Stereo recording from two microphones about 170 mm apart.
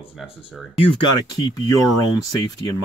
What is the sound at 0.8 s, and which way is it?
Speech, 30° left (ahead or behind).